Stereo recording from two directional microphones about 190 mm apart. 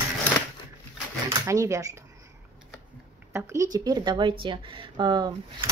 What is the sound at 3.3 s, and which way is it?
Speech, 15° right (ahead or behind).